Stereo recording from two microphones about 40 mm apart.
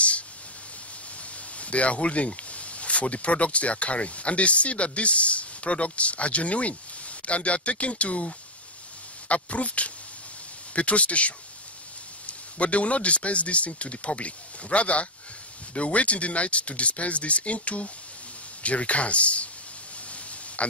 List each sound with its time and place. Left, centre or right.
1.6 s a man's voice: left